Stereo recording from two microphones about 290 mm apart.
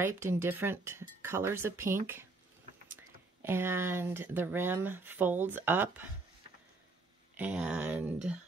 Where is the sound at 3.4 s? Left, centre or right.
Centre.